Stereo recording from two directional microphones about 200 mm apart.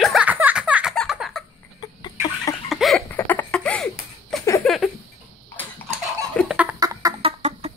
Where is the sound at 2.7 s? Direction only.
Centre (ahead or behind).